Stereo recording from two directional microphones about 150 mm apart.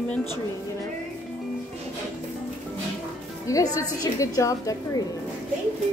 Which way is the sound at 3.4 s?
25° left (ahead or behind).